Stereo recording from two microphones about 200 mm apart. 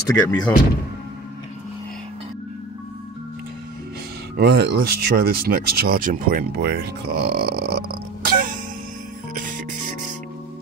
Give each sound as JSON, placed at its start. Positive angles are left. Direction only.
{"t": 0.1, "sound": "speech", "side_deg": 20}
{"t": 4.4, "sound": "speech", "side_deg": -55}
{"t": 8.3, "sound": "music", "side_deg": -45}